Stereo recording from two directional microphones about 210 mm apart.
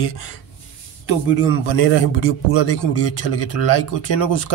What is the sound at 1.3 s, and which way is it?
A man's voice, 60° left (ahead or behind).